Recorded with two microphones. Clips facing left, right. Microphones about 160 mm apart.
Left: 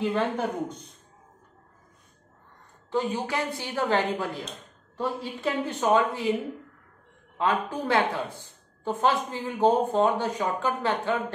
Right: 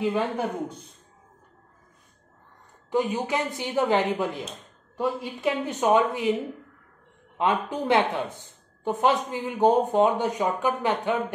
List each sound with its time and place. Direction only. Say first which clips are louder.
0.0 s a woman's voice: right 1 dB; 10° right (ahead or behind)
2.9 s a woman's voice: right 3 dB; 15° right (ahead or behind)
7.3 s a woman's voice: right 1 dB; 20° right (ahead or behind)